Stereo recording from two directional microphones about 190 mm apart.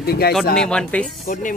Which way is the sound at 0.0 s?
55° left (ahead or behind).